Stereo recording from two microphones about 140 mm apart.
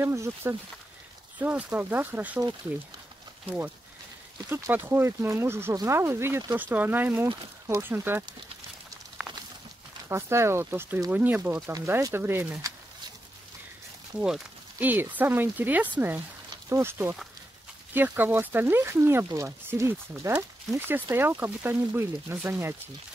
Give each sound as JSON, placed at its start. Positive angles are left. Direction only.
{"t": 0.0, "sound": "speech", "side_deg": -20}
{"t": 4.5, "sound": "speech", "side_deg": -15}
{"t": 10.0, "sound": "speech", "side_deg": -20}
{"t": 14.2, "sound": "speech", "side_deg": -10}